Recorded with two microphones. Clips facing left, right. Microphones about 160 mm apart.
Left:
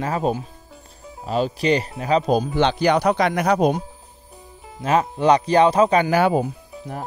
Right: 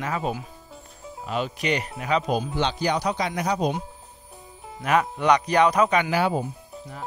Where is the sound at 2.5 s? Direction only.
65° left (ahead or behind).